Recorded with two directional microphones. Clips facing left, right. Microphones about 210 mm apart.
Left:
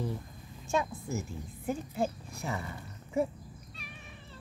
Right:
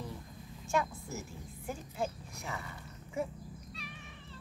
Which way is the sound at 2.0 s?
35° left (ahead or behind).